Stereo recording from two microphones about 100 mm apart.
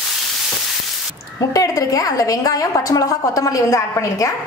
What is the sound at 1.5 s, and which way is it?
A woman's voice, 35° left (ahead or behind).